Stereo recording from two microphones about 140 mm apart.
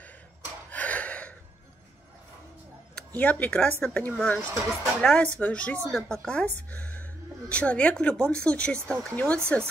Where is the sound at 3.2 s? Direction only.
10° left (ahead or behind).